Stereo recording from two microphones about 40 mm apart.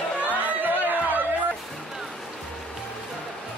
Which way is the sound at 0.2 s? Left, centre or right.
Right.